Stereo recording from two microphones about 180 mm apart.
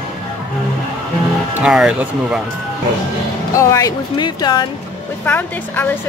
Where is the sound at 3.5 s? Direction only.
15° left (ahead or behind).